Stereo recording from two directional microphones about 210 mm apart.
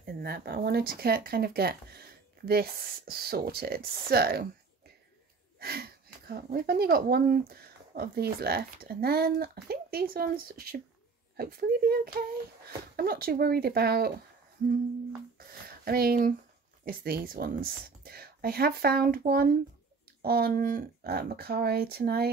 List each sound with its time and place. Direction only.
0.0 s speech: 45° right (ahead or behind)
5.6 s speech: 45° right (ahead or behind)
15.3 s a sound: 45° right (ahead or behind)
16.8 s speech: 45° right (ahead or behind)